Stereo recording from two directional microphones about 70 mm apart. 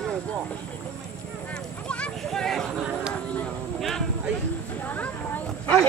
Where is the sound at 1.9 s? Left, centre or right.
Centre.